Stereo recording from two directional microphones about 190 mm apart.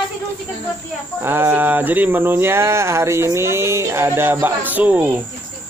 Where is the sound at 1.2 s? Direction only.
10° right (ahead or behind).